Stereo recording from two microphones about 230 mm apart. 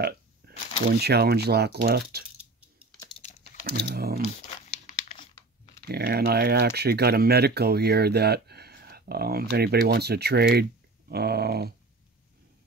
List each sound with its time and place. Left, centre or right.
0.0 s speech: right
3.2 s typing: left
3.6 s speech: right
5.9 s speech: right